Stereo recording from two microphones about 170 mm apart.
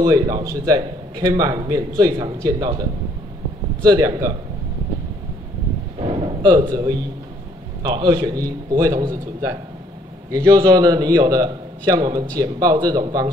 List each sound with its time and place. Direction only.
0.0 s a man's voice: 20° right (ahead or behind)
3.8 s a man's voice: 20° right (ahead or behind)
5.9 s a sound: 30° right (ahead or behind)
7.8 s a man's voice: 25° right (ahead or behind)